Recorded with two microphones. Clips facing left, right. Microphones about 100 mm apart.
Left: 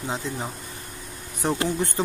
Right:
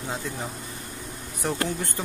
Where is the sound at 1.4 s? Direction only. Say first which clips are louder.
Left 3 dB; 20° left (ahead or behind).